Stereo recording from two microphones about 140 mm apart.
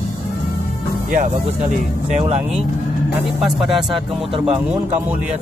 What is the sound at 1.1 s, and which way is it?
Speech, 60° right (ahead or behind).